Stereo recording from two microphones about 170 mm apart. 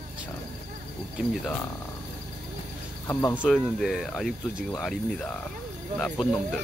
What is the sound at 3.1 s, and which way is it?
Speech, 15° left (ahead or behind).